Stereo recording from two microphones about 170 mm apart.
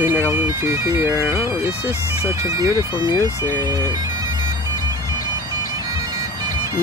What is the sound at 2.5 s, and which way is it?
Speech, 20° right (ahead or behind).